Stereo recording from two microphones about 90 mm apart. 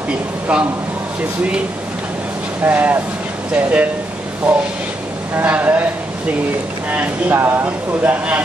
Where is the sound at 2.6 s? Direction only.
20° right (ahead or behind).